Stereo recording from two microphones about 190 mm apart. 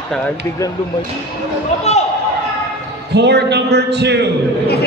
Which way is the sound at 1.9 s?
35° left (ahead or behind).